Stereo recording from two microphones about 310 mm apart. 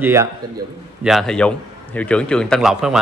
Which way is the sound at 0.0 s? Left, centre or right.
Centre.